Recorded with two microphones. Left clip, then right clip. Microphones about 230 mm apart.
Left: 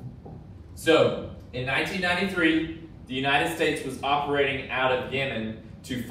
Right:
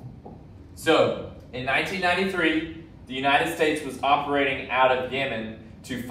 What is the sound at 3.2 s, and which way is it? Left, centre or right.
A man's voice, centre.